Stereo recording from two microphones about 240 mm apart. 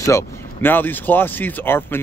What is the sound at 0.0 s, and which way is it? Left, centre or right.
Speech, centre.